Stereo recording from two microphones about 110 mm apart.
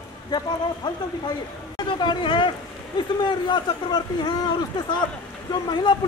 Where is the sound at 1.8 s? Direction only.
45° left (ahead or behind).